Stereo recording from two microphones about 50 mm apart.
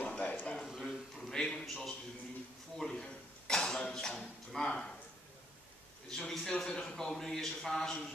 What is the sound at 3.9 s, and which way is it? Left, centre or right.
Speech, centre.